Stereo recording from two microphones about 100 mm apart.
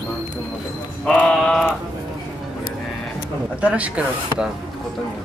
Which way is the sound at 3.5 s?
15° right (ahead or behind).